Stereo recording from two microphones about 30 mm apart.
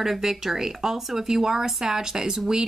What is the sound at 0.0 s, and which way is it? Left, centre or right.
Speech, centre.